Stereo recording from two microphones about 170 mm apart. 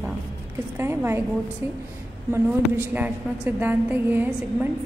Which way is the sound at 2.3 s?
10° right (ahead or behind).